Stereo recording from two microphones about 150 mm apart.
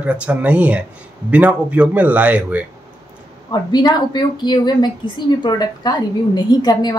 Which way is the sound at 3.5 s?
30° left (ahead or behind).